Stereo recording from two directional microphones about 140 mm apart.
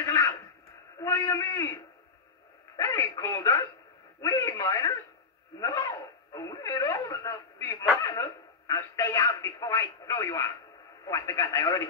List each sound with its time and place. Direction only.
0.0 s a sound: 20° left (ahead or behind)
3.2 s speech: 25° left (ahead or behind)
11.5 s a man's voice: 30° left (ahead or behind)